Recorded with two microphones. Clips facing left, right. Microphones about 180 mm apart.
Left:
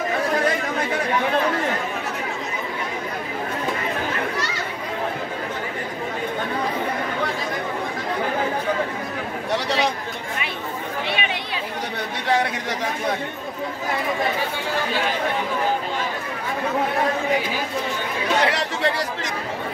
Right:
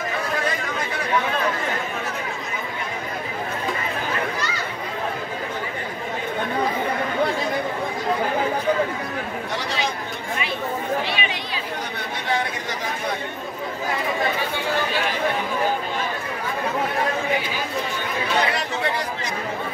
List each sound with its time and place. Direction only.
11.1 s chatter: 55° left (ahead or behind)
18.4 s chatter: 80° left